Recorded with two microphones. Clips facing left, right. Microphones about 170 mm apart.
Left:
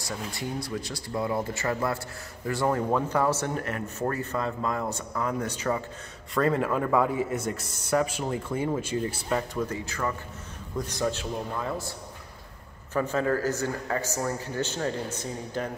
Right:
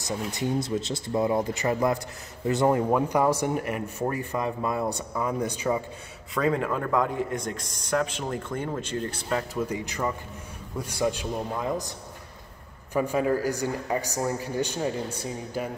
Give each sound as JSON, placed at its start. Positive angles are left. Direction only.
{"t": 0.0, "sound": "speech", "side_deg": -20}
{"t": 6.3, "sound": "a man's voice", "side_deg": 0}
{"t": 9.7, "sound": "speech", "side_deg": -15}
{"t": 12.9, "sound": "speech", "side_deg": -10}